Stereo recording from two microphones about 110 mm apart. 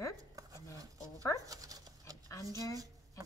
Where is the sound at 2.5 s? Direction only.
30° left (ahead or behind).